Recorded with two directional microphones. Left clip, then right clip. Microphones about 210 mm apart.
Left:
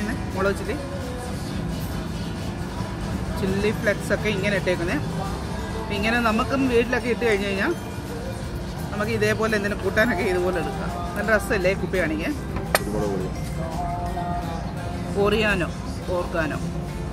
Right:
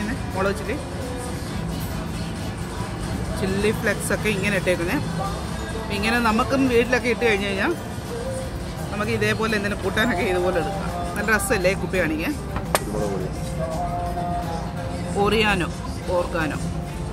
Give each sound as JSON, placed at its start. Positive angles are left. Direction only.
{"t": 3.6, "sound": "speech", "side_deg": -20}
{"t": 8.9, "sound": "speech", "side_deg": -10}
{"t": 15.2, "sound": "speech", "side_deg": -15}